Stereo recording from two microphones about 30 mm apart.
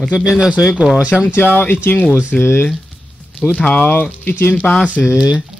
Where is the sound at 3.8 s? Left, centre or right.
Left.